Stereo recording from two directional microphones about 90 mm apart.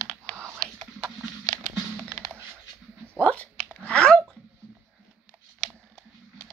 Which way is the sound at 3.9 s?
10° left (ahead or behind).